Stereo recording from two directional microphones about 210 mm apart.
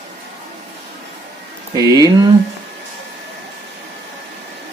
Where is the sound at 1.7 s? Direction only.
20° right (ahead or behind).